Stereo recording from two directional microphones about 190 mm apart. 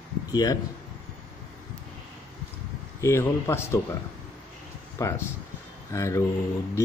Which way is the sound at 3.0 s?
15° left (ahead or behind).